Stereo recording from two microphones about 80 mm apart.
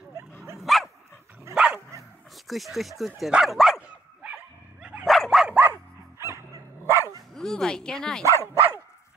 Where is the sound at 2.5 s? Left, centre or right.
Centre.